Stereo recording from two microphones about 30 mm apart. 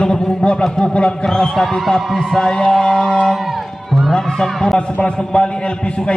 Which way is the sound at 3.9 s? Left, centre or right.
Centre.